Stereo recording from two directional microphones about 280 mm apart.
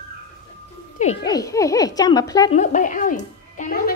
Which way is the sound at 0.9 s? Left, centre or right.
Left.